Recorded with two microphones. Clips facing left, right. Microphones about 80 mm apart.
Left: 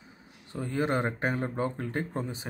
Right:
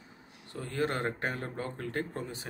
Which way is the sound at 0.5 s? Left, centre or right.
Centre.